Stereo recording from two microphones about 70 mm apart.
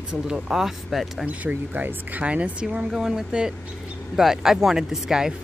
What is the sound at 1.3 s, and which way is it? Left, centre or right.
Speech, right.